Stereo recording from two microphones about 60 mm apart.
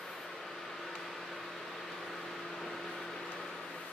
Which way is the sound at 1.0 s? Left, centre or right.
Centre.